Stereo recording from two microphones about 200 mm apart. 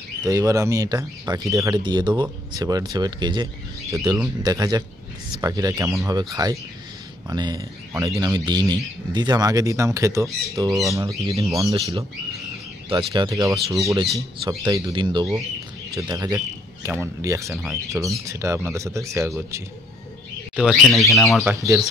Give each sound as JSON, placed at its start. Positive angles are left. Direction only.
{"t": 0.2, "sound": "speech", "side_deg": -15}
{"t": 10.2, "sound": "speech", "side_deg": 0}
{"t": 10.5, "sound": "speech", "side_deg": -15}
{"t": 20.5, "sound": "speech", "side_deg": 0}
{"t": 21.5, "sound": "speech", "side_deg": -15}